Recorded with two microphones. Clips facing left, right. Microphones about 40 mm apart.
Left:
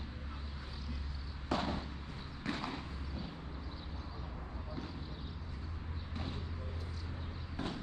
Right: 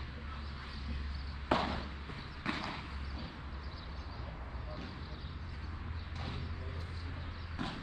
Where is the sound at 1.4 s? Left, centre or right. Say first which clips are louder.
Right 3 dB; right.